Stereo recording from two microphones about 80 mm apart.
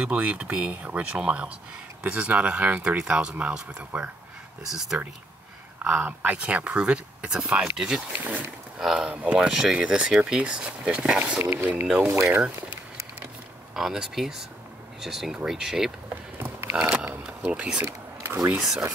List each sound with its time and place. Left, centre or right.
0.0 s speech: centre
5.8 s speech: centre
8.2 s speech: right
8.7 s speech: centre
11.1 s speech: right
11.9 s speech: centre
12.2 s speech: right
13.7 s speech: centre
16.3 s a sound: right